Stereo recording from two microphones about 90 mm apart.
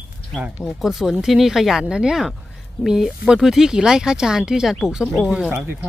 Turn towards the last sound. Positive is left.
turn(degrees=-10)  # may be behind; listen again after turning